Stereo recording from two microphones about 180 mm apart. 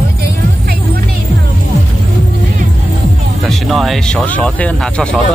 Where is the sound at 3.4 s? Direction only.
Centre (ahead or behind).